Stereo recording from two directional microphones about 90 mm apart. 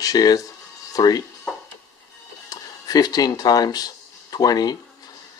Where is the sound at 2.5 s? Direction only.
45° left (ahead or behind).